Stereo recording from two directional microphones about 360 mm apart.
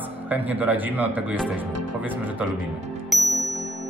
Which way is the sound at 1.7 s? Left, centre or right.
Right.